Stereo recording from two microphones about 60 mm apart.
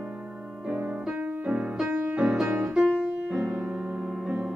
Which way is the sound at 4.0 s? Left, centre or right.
Centre.